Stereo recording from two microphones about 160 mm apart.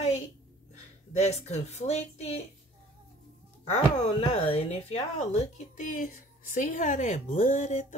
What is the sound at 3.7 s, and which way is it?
Speech, 40° left (ahead or behind).